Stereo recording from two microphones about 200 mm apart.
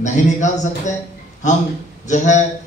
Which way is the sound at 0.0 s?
35° left (ahead or behind).